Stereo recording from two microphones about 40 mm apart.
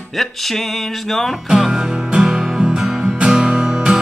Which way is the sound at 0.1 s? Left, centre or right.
Centre.